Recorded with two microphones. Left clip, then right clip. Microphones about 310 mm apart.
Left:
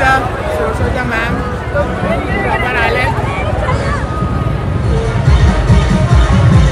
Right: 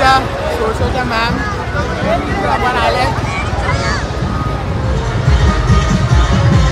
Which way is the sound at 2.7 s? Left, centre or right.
Centre.